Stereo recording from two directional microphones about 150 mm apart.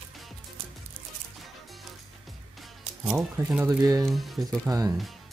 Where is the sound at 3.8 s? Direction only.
25° right (ahead or behind).